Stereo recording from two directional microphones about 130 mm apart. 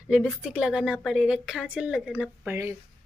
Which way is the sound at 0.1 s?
10° right (ahead or behind).